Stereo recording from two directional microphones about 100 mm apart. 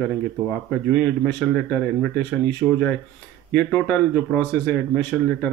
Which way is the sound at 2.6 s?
5° left (ahead or behind).